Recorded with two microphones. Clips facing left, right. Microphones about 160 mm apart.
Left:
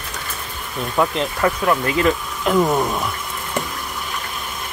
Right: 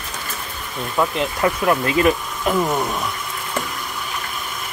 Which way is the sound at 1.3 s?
20° right (ahead or behind).